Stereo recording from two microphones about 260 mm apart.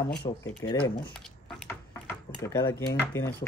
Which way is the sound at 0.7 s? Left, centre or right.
Centre.